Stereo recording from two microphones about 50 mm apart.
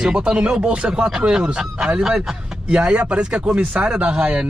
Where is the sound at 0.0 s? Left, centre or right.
Centre.